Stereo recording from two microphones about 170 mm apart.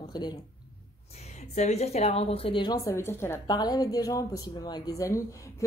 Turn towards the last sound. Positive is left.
turn(degrees=20)  # may be behind; listen again after turning